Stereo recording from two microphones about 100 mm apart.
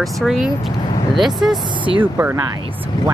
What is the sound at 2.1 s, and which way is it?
Speech, 25° right (ahead or behind).